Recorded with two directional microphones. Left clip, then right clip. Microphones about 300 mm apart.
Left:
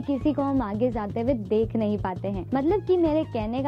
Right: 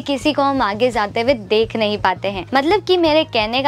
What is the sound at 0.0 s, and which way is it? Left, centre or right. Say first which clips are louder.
A woman's voice: right 9 dB; centre.